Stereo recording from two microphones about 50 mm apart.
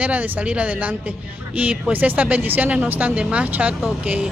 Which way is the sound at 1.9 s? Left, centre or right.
Right.